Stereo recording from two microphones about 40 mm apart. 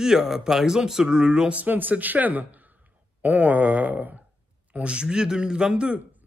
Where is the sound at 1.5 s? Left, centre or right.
Right.